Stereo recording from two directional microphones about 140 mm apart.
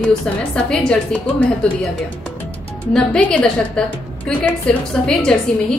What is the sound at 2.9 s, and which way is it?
A woman's voice, 5° left (ahead or behind).